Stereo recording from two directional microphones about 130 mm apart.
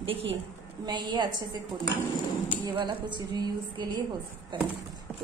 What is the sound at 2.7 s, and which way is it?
Speech, 35° right (ahead or behind).